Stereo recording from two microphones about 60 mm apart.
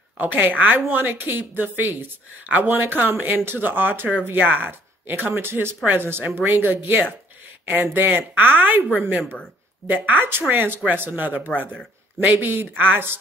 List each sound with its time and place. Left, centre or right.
0.2 s speech: right
9.8 s speech: right